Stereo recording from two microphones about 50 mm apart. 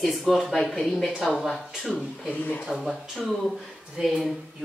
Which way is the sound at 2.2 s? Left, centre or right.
Left.